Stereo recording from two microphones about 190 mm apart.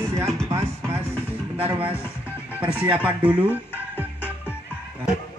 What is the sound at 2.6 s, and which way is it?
Music, 5° right (ahead or behind).